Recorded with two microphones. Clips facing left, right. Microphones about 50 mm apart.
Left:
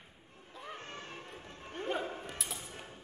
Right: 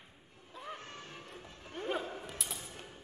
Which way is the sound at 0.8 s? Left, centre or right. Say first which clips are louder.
Left 2 dB; left.